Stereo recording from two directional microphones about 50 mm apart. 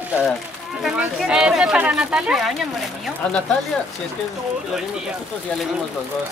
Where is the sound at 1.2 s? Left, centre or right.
Centre.